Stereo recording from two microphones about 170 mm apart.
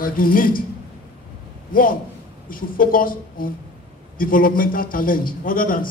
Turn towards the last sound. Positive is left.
turn(degrees=55)  # may be behind; listen again after turning